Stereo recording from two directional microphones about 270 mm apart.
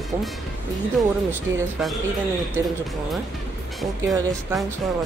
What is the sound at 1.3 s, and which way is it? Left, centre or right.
Speech, centre.